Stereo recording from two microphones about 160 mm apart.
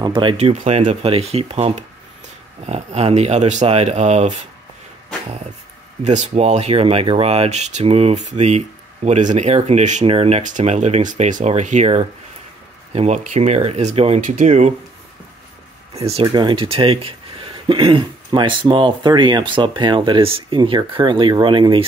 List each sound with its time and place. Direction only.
0.0 s speech: 30° right (ahead or behind)
6.0 s speech: 45° right (ahead or behind)
14.2 s speech: 50° right (ahead or behind)
15.9 s speech: 40° right (ahead or behind)
16.3 s speech: 30° right (ahead or behind)